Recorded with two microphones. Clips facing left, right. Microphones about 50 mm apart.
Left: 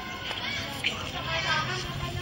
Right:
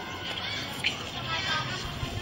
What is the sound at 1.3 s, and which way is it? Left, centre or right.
Vehicle, left.